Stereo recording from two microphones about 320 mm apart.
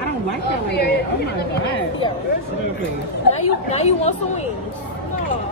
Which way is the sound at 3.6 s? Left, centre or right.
Centre.